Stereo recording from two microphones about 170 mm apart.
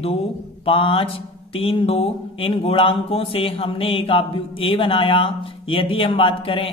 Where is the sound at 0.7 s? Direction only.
30° left (ahead or behind).